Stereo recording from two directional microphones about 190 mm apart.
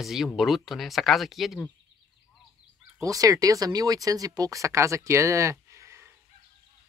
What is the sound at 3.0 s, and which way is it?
Speech, 20° right (ahead or behind).